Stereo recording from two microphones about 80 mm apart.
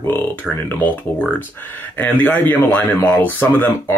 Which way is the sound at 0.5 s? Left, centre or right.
Left.